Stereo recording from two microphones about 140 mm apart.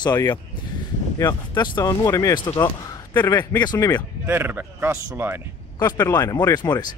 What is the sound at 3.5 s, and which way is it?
Speech, 30° left (ahead or behind).